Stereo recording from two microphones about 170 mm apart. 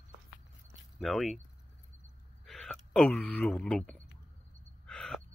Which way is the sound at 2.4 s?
Centre (ahead or behind).